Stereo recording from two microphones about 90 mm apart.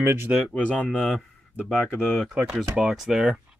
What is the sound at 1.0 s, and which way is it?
Speech, centre (ahead or behind).